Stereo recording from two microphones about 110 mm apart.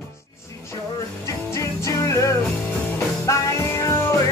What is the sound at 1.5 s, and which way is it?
Music, 25° left (ahead or behind).